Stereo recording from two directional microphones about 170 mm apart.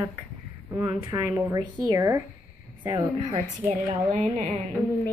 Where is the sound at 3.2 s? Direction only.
40° right (ahead or behind).